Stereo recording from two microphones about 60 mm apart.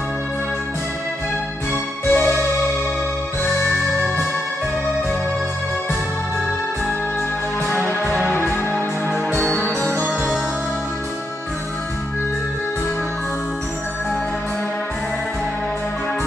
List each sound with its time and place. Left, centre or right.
1.7 s music: left
8.0 s music: centre
9.1 s music: left